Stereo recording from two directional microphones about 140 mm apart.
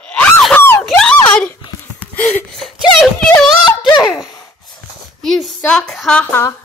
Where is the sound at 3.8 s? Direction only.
35° left (ahead or behind).